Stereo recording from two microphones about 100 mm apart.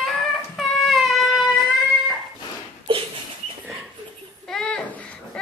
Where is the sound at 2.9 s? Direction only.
65° right (ahead or behind).